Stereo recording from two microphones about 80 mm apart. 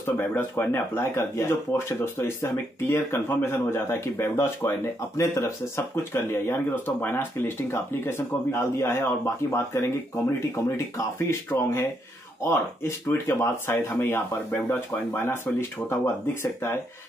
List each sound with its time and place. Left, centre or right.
0.0 s speech: left